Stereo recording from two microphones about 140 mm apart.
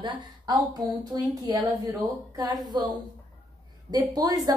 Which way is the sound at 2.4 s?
30° right (ahead or behind).